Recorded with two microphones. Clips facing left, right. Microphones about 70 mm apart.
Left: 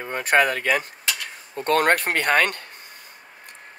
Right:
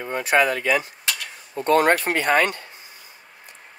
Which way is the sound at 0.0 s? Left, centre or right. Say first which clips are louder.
Even; left.